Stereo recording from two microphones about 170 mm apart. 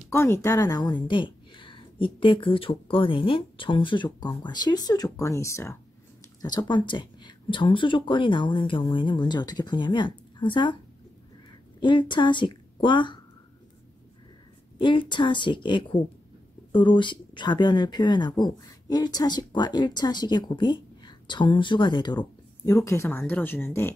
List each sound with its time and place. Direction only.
0.1 s speech: 15° left (ahead or behind)
11.8 s a woman's voice: 30° left (ahead or behind)
14.8 s speech: 30° left (ahead or behind)
22.8 s speech: 15° left (ahead or behind)